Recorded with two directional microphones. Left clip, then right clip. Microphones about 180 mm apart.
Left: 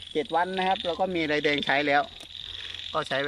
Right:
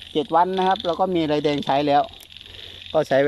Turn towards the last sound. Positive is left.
turn(degrees=-30)  # may be behind; listen again after turning